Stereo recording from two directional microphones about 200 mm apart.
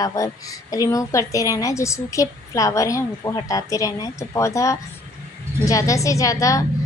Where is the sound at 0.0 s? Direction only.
15° left (ahead or behind).